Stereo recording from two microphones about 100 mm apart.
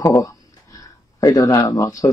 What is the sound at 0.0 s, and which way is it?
Speech, 35° left (ahead or behind).